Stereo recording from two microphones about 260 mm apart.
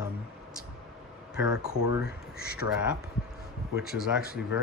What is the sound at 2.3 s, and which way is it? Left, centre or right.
Speech, left.